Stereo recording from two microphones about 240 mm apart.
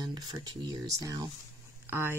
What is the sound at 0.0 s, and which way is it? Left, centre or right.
Speech, centre.